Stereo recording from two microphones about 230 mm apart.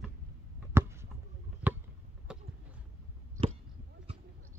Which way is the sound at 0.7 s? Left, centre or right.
Centre.